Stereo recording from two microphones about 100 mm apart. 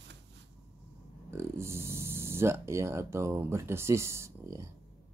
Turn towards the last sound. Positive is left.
turn(degrees=-30)  # may be behind; listen again after turning